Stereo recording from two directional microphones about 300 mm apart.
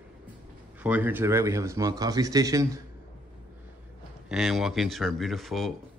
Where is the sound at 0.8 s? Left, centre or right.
Centre.